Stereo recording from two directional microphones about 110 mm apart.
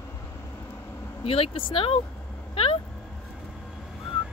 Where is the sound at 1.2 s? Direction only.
60° left (ahead or behind).